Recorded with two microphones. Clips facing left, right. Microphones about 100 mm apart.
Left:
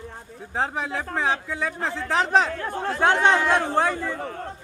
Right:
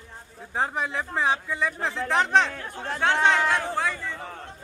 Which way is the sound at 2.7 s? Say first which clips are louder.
Left 5 dB; 55° left (ahead or behind).